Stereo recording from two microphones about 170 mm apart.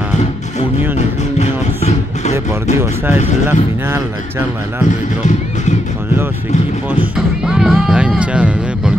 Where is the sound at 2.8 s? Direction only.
15° right (ahead or behind).